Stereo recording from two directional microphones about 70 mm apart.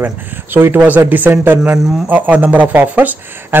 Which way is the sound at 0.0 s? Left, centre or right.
Right.